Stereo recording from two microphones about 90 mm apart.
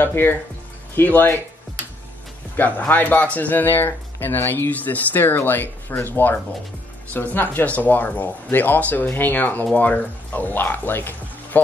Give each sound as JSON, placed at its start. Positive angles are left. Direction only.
{"t": 0.0, "sound": "speech", "side_deg": 25}
{"t": 2.5, "sound": "speech", "side_deg": 20}